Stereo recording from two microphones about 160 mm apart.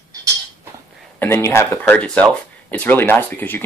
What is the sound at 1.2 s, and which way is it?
Speech, 15° left (ahead or behind).